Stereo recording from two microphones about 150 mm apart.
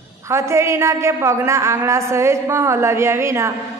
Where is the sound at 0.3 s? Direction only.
20° right (ahead or behind).